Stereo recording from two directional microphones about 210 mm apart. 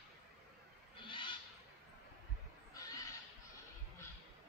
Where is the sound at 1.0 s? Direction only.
25° left (ahead or behind).